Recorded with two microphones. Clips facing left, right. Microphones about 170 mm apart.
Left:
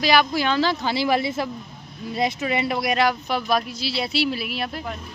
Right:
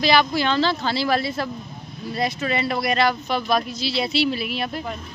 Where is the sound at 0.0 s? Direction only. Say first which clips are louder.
Right 1 dB; 10° left (ahead or behind).